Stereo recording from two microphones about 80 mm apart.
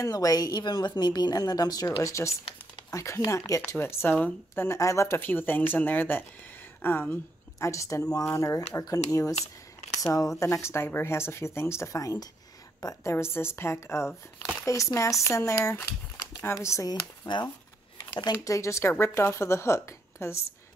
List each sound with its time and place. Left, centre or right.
0.0 s a woman's voice: left
2.0 s speech: left
3.7 s speech: left
4.7 s speech: left
7.5 s a woman's voice: left
13.0 s a woman's voice: left
16.9 s speech: left
18.4 s speech: left